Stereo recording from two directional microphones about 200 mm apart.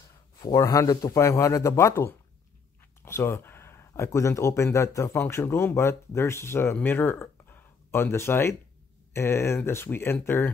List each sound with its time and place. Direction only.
0.4 s a man's voice: 15° left (ahead or behind)